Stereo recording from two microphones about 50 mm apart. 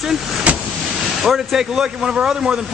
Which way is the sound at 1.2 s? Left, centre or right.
Centre.